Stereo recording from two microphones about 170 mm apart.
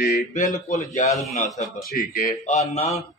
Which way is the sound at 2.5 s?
40° left (ahead or behind).